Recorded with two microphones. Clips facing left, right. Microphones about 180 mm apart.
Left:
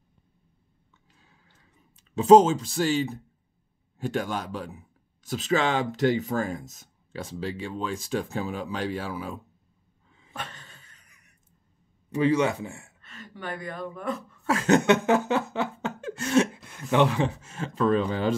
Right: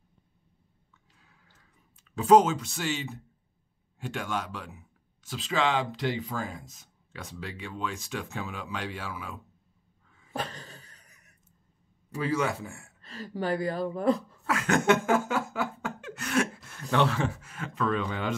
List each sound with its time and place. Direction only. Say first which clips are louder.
2.1 s a man's voice: left 4 dB; 25° left (ahead or behind); by 7.2 s 40° left (ahead or behind)
7.2 s speech: left 7 dB; 30° left (ahead or behind)
10.3 s a sound: right 4 dB; 35° right (ahead or behind)
12.1 s a man's voice: left 6 dB; 20° left (ahead or behind)
13.0 s speech: right 7 dB; 35° right (ahead or behind)
14.4 s a sound: left 9 dB; 30° left (ahead or behind)
16.9 s speech: left 4 dB; 15° left (ahead or behind); by 18.3 s 35° left (ahead or behind)